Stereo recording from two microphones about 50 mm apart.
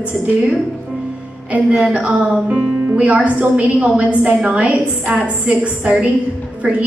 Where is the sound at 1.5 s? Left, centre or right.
Right.